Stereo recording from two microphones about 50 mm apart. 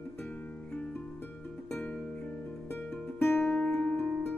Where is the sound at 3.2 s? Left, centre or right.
Left.